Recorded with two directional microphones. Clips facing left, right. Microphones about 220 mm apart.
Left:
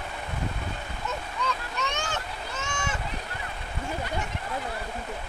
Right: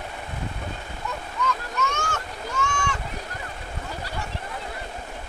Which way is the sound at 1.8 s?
15° left (ahead or behind).